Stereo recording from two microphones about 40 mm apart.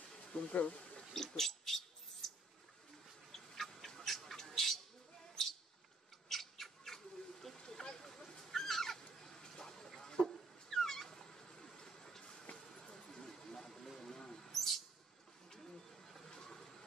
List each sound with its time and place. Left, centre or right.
0.3 s speech: left
1.1 s speech: centre
3.3 s bird: centre
6.2 s bird: centre
7.5 s a sound: centre
8.0 s a sound: centre
12.5 s vehicle: centre
14.2 s a sound: centre
16.3 s vehicle: centre